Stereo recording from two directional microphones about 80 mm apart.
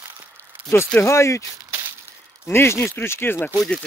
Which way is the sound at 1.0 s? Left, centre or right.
Left.